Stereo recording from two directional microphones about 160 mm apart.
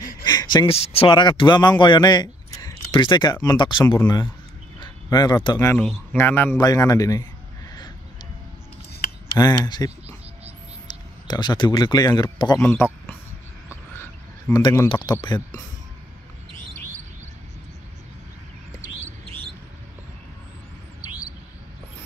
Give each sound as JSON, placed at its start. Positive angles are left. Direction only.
{"t": 0.2, "sound": "a sound", "side_deg": 25}
{"t": 0.7, "sound": "speech", "side_deg": 35}
{"t": 4.7, "sound": "a sound", "side_deg": 25}
{"t": 5.7, "sound": "a man's voice", "side_deg": 10}
{"t": 9.4, "sound": "speech", "side_deg": 25}
{"t": 12.6, "sound": "a man's voice", "side_deg": 15}
{"t": 13.9, "sound": "frog", "side_deg": 15}
{"t": 14.9, "sound": "speech", "side_deg": 30}
{"t": 19.2, "sound": "bird", "side_deg": -30}